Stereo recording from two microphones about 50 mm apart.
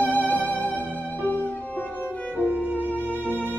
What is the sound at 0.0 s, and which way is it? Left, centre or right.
Music, left.